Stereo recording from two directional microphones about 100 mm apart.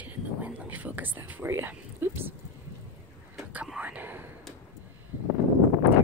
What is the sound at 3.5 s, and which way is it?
Whispering, 10° right (ahead or behind).